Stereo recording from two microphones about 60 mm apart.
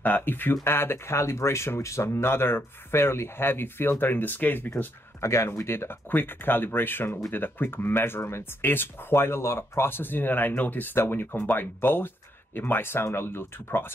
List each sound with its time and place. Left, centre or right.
0.0 s speech: left
5.2 s speech: left